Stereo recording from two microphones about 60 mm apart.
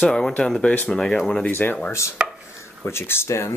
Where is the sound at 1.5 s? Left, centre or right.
Left.